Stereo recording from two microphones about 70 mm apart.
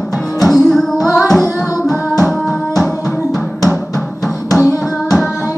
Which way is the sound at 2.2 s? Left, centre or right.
Centre.